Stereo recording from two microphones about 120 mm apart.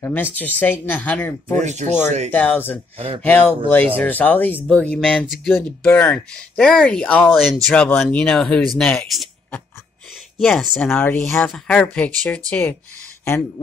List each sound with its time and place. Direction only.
0.0 s speech: 15° left (ahead or behind)
1.6 s speech: 80° right
2.3 s speech: 15° left (ahead or behind)
10.4 s speech: centre (ahead or behind)
10.9 s speech: 15° left (ahead or behind)